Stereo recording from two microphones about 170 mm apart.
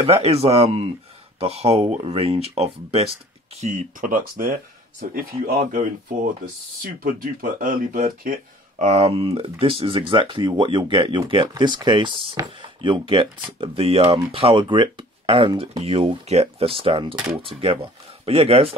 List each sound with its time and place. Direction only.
0.0 s speech: 35° right (ahead or behind)